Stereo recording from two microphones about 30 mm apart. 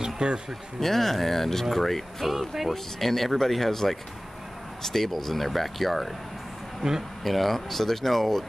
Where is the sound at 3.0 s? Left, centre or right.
Centre.